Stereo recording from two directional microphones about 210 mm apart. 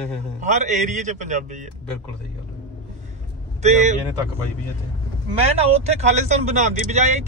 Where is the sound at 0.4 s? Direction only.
35° right (ahead or behind).